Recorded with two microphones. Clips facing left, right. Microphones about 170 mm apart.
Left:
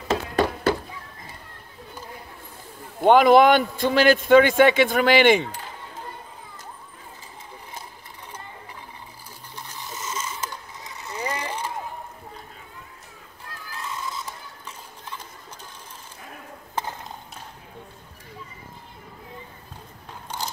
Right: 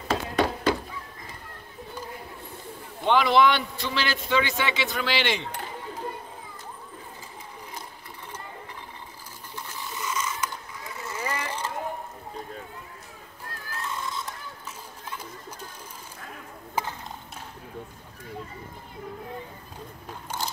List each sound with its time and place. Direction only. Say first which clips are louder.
3.0 s a man's voice: left 6 dB; 50° left (ahead or behind)
9.8 s mechanisms: right 1 dB; 25° left (ahead or behind)
13.7 s horse: even; centre (ahead or behind)
16.8 s a sound: even; 10° right (ahead or behind)
20.3 s biting: even; 15° left (ahead or behind)